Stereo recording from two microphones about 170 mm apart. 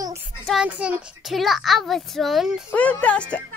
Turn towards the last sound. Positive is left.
turn(degrees=5)  # may be behind; listen again after turning